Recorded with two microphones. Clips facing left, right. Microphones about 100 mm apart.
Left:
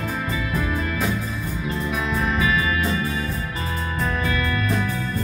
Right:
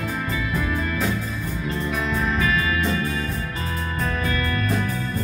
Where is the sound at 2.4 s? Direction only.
15° left (ahead or behind).